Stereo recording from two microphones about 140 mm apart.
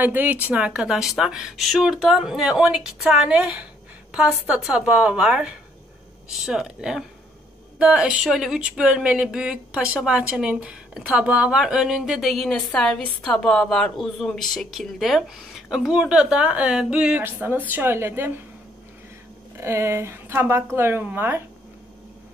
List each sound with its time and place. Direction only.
0.0 s speech: 15° right (ahead or behind)
19.5 s speech: 20° right (ahead or behind)